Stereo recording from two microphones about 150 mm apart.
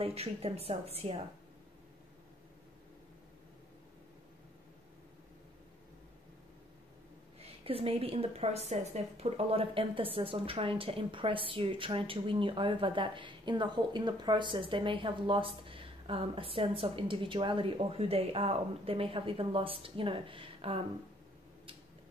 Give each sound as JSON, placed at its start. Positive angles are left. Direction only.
{"t": 0.0, "sound": "speech", "side_deg": -40}
{"t": 7.3, "sound": "a woman's voice", "side_deg": -40}